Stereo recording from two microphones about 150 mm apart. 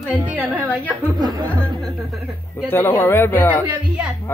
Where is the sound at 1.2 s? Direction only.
30° right (ahead or behind).